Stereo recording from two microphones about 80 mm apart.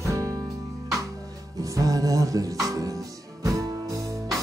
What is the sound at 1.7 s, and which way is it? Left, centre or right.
Music, right.